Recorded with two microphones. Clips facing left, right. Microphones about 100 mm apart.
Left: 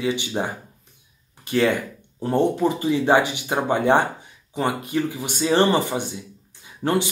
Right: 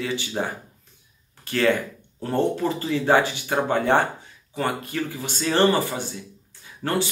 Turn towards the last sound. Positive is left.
turn(degrees=20)  # may be behind; listen again after turning